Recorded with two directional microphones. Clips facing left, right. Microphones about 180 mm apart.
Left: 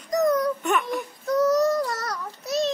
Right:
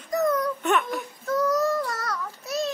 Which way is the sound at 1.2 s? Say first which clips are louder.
Left 3 dB; 20° left (ahead or behind).